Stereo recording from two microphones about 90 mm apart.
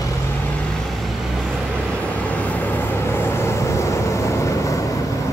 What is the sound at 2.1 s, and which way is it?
Vehicle, 15° left (ahead or behind).